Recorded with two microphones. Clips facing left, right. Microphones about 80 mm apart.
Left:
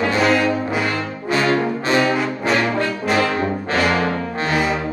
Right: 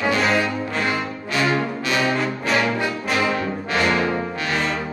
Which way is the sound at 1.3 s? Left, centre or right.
Left.